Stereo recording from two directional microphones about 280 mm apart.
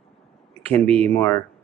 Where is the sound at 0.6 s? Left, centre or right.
Right.